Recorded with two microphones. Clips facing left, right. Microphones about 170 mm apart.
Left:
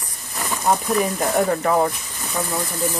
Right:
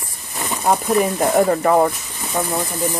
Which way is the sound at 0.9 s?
5° right (ahead or behind).